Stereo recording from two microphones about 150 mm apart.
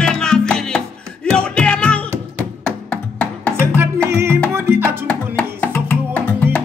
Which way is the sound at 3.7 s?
15° right (ahead or behind).